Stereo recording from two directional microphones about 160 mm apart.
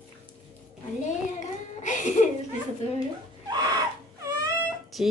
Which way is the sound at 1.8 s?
50° left (ahead or behind).